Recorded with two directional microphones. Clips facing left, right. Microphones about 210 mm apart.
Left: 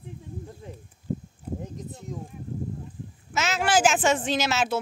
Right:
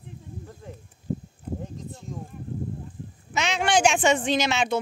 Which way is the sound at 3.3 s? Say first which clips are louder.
Even; 5° left (ahead or behind).